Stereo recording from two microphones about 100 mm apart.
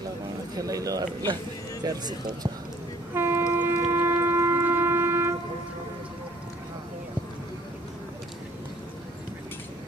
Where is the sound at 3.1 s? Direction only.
25° right (ahead or behind).